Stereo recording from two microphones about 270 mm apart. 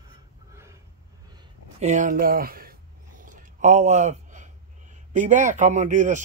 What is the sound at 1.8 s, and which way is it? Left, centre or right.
Speech, right.